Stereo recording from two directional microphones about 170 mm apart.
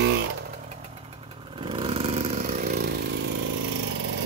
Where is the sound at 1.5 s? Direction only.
30° right (ahead or behind); by 3.4 s 75° right (ahead or behind).